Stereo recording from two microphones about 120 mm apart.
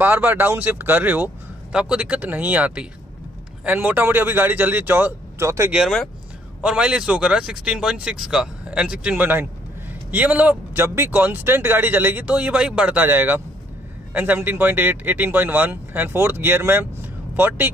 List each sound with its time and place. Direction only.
0.0 s speech: 15° right (ahead or behind)
5.7 s speech: centre (ahead or behind); by 17.7 s 15° right (ahead or behind)